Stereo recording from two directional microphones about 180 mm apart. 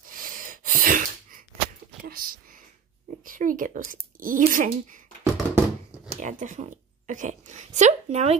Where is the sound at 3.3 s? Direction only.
50° right (ahead or behind).